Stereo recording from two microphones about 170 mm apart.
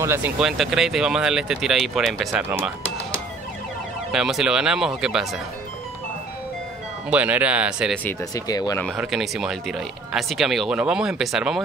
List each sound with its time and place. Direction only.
0.0 s speech: 10° right (ahead or behind)
4.1 s speech: centre (ahead or behind)
7.1 s speech: 10° right (ahead or behind)
8.5 s speech: 20° left (ahead or behind)
8.9 s speech: centre (ahead or behind)